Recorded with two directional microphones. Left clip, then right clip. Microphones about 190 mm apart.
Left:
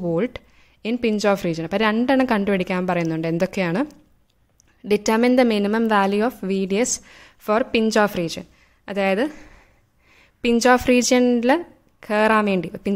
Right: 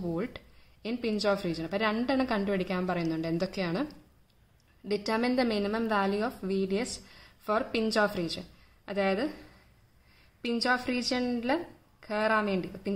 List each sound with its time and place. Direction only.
0.0 s a woman's voice: 40° left (ahead or behind)